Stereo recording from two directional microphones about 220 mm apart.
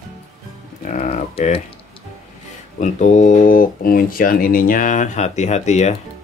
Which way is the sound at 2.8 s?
35° left (ahead or behind).